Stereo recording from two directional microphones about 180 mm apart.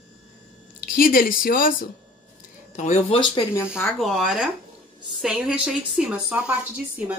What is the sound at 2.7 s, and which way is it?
Speech, 35° left (ahead or behind).